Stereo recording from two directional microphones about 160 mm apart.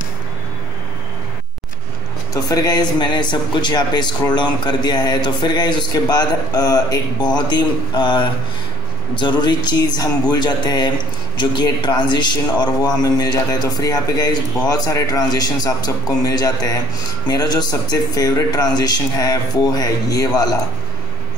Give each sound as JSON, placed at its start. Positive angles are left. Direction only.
{"t": 2.3, "sound": "a man's voice", "side_deg": 25}